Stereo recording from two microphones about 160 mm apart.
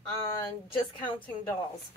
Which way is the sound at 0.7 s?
30° left (ahead or behind).